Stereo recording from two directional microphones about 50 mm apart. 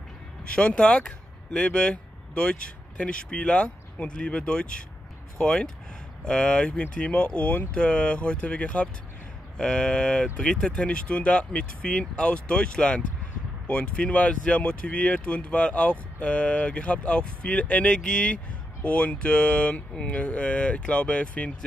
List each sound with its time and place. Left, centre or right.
0.5 s speech: left
10.8 s speech: left